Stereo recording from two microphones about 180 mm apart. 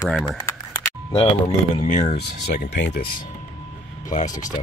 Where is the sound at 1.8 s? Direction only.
40° left (ahead or behind).